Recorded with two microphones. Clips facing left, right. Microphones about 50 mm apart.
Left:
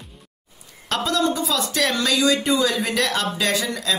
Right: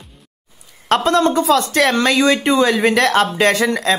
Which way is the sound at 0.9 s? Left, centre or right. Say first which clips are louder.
Right 7 dB; right.